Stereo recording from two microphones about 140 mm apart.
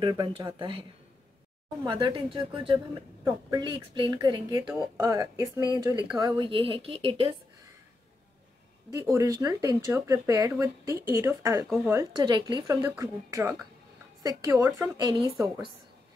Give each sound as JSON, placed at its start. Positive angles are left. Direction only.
{"t": 0.1, "sound": "speech", "side_deg": -30}
{"t": 1.9, "sound": "speech", "side_deg": -35}
{"t": 8.9, "sound": "speech", "side_deg": -25}
{"t": 12.0, "sound": "speech", "side_deg": -30}
{"t": 12.8, "sound": "speech", "side_deg": -20}